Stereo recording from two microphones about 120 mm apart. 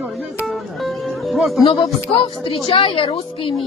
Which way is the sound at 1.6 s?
50° left (ahead or behind).